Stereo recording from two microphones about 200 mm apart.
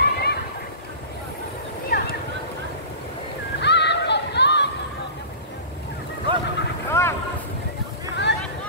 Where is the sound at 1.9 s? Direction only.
50° left (ahead or behind).